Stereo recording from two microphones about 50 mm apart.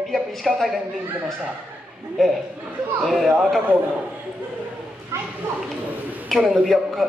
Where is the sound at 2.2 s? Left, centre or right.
Centre.